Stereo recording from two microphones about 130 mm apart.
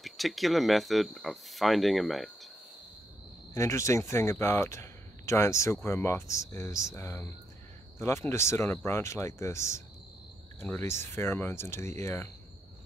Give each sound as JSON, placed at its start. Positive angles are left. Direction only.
{"t": 0.0, "sound": "speech", "side_deg": 0}
{"t": 3.5, "sound": "speech", "side_deg": 20}